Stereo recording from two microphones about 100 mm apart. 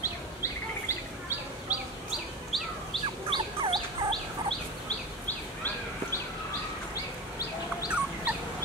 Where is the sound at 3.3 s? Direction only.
55° right (ahead or behind).